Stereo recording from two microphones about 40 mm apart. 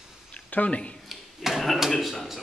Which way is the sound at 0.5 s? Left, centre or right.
Left.